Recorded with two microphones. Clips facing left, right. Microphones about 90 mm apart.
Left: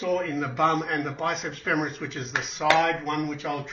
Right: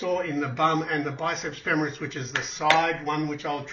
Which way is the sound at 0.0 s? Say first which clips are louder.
Even; centre (ahead or behind).